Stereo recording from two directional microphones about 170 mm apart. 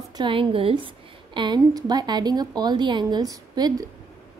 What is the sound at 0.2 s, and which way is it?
A woman's voice, 30° right (ahead or behind).